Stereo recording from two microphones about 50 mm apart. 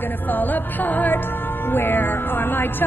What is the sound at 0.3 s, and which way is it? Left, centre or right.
Music, left.